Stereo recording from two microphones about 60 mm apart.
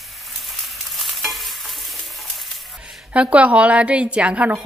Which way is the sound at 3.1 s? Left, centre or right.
Right.